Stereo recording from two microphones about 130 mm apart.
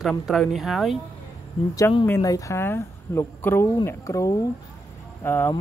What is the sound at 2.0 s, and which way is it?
Speech, 20° left (ahead or behind).